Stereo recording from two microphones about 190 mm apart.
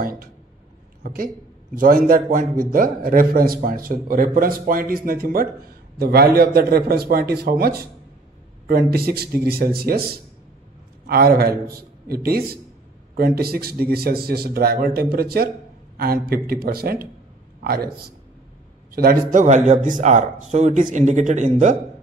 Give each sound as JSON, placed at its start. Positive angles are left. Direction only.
{"t": 0.0, "sound": "a man's voice", "side_deg": -50}
{"t": 18.9, "sound": "a man's voice", "side_deg": -50}
{"t": 19.4, "sound": "speech", "side_deg": -35}